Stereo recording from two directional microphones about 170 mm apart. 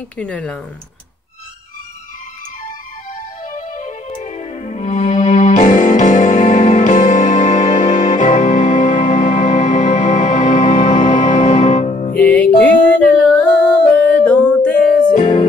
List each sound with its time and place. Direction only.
0.2 s speech: 5° left (ahead or behind)
3.5 s music: 45° left (ahead or behind)
12.2 s music: 5° left (ahead or behind)